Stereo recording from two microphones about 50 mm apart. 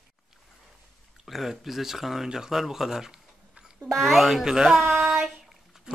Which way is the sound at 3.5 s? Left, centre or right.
Centre.